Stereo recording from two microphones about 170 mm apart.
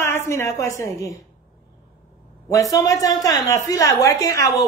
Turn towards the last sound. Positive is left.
turn(degrees=20)  # may be behind; listen again after turning